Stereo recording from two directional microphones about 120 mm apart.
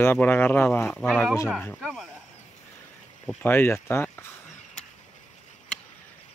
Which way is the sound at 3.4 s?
20° left (ahead or behind).